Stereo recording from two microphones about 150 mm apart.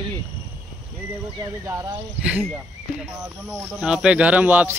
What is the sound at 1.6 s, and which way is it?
Speech, 20° right (ahead or behind).